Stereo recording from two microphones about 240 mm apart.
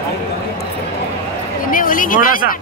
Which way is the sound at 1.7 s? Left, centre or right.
Left.